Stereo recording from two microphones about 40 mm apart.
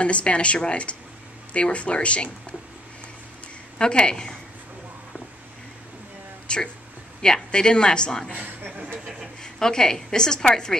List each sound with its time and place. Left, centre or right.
0.0 s speech: left
3.7 s speech: left
6.4 s a sound: left
7.2 s speech: centre
8.3 s speech: right
9.4 s a woman's voice: centre